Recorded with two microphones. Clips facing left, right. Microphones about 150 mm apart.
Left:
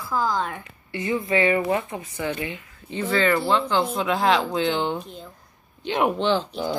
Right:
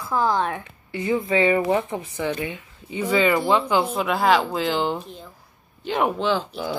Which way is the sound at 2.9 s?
15° right (ahead or behind).